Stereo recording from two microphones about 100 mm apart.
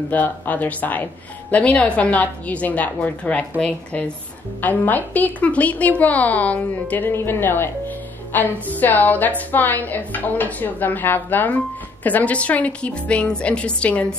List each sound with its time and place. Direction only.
0.1 s a woman's voice: 15° left (ahead or behind)